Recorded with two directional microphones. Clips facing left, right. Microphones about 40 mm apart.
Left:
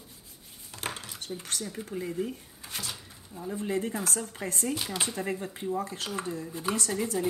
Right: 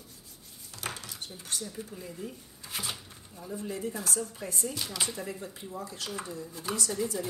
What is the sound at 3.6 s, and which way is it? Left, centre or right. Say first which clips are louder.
Speech: left 5 dB; left.